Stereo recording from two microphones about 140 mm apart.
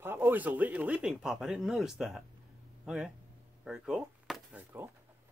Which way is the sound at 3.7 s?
5° right (ahead or behind).